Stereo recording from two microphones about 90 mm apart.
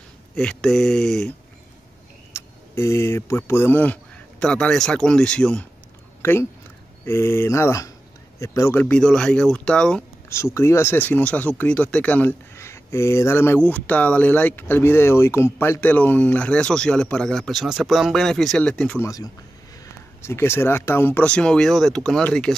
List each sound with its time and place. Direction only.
0.4 s speech: 10° left (ahead or behind)
2.3 s speech: 30° left (ahead or behind); by 5.7 s 10° left (ahead or behind)
7.1 s speech: 30° left (ahead or behind)
8.7 s speech: 20° left (ahead or behind)
9.0 s speech: 5° left (ahead or behind)
10.3 s speech: 30° left (ahead or behind); by 18.9 s 10° left (ahead or behind)
18.9 s speech: 40° left (ahead or behind); by 22.6 s 10° left (ahead or behind)